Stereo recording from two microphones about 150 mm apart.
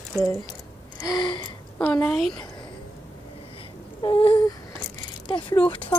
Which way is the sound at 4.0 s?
35° left (ahead or behind).